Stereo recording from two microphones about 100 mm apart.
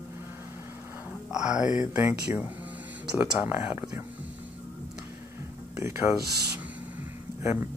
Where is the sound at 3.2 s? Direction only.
20° right (ahead or behind).